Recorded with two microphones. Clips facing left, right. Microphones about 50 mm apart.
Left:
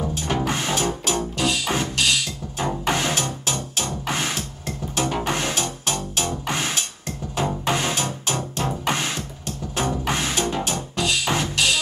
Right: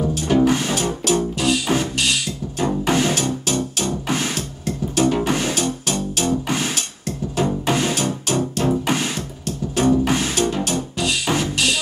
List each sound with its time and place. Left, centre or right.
0.1 s music: centre